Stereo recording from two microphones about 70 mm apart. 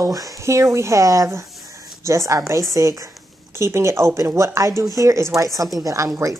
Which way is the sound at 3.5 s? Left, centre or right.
Right.